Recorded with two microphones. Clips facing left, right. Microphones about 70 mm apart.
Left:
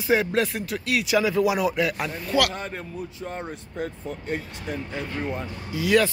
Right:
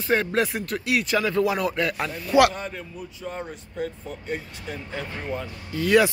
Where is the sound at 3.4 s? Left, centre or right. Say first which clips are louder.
Right 1 dB; left.